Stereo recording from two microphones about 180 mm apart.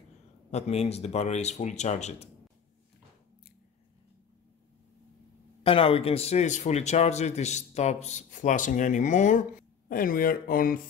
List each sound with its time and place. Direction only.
0.5 s speech: 35° left (ahead or behind)
5.6 s speech: 30° left (ahead or behind); by 10.8 s 50° left (ahead or behind)